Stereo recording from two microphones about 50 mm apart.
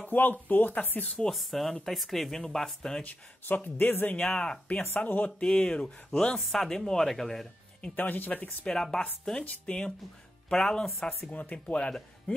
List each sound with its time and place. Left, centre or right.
0.0 s speech: left
1.3 s speech: centre
3.0 s speech: left
4.2 s a woman's voice: centre
4.8 s speech: left
5.4 s a woman's voice: centre
6.4 s a woman's voice: centre
7.9 s speech: left
8.6 s a woman's voice: centre
11.1 s speech: left